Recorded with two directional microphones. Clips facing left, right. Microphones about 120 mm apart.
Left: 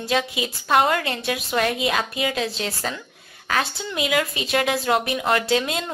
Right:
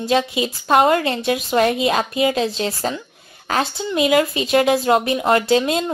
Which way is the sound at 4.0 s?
35° right (ahead or behind).